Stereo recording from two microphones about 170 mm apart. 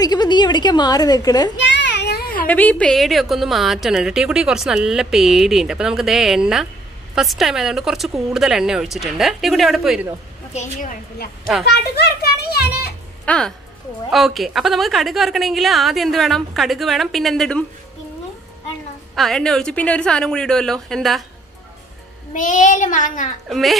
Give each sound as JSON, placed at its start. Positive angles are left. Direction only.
{"t": 0.0, "sound": "a woman's voice", "side_deg": 25}
{"t": 1.6, "sound": "child singing", "side_deg": 90}
{"t": 2.4, "sound": "a woman's voice", "side_deg": 10}
{"t": 10.5, "sound": "a child's voice", "side_deg": 45}
{"t": 11.7, "sound": "children playing", "side_deg": 70}
{"t": 13.2, "sound": "a woman's voice", "side_deg": 5}
{"t": 19.1, "sound": "a woman's voice", "side_deg": 0}
{"t": 22.3, "sound": "a child's voice", "side_deg": 45}
{"t": 23.5, "sound": "a woman's voice", "side_deg": 0}